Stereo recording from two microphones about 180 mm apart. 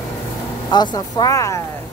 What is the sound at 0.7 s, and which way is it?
Speech, 20° left (ahead or behind).